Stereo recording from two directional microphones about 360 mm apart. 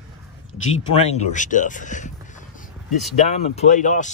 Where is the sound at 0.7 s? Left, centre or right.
Centre.